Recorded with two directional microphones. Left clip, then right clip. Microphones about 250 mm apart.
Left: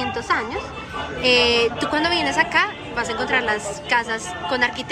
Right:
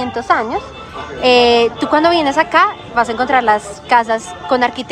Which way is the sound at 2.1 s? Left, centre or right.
Right.